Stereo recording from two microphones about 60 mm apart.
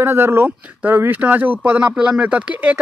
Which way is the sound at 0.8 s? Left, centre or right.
Right.